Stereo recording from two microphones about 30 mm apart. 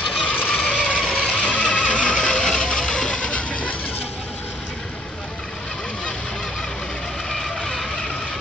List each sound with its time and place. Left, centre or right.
0.3 s vehicle: left
2.1 s a sound: left
7.2 s vehicle: centre